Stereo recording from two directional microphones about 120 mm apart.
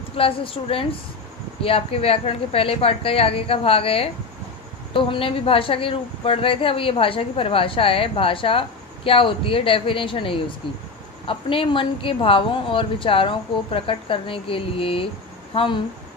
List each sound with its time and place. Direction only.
0.2 s speech: 50° left (ahead or behind)